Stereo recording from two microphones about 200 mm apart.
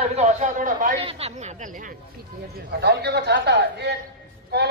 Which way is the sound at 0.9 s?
30° right (ahead or behind).